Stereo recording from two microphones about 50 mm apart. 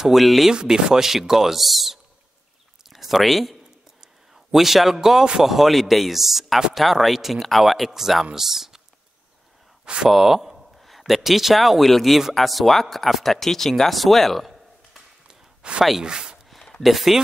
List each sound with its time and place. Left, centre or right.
0.0 s a man's voice: centre
0.5 s speech: centre
2.8 s a sound: centre
4.9 s a man's voice: centre
10.0 s a man's voice: centre
15.2 s a sound: right
16.0 s speech: centre
16.4 s a sound: centre
16.8 s a man's voice: centre